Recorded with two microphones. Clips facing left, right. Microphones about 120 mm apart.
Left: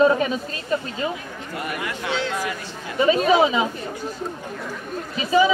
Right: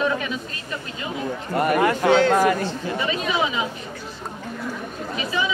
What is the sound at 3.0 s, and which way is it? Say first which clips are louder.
Speech: left 9 dB; 40° left (ahead or behind).